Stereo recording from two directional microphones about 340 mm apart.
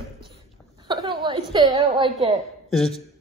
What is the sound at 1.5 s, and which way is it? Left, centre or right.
Speech, centre.